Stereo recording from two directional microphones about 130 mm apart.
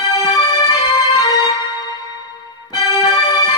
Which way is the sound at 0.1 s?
30° left (ahead or behind).